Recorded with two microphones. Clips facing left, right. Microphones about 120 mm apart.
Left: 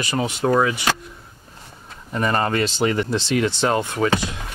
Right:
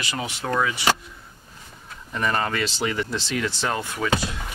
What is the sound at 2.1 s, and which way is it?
Speech, 35° left (ahead or behind).